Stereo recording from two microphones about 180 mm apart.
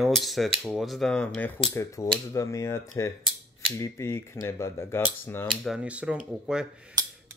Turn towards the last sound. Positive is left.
turn(degrees=-20)  # may be behind; listen again after turning